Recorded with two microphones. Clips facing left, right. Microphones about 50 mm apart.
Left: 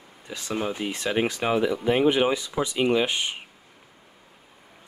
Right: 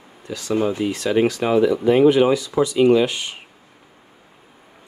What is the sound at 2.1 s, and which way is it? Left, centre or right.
Speech, left.